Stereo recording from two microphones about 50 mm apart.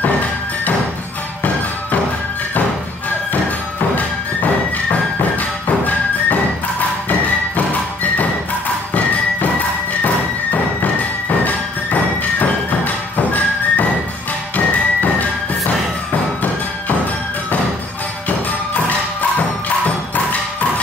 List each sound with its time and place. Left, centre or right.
11.4 s music: left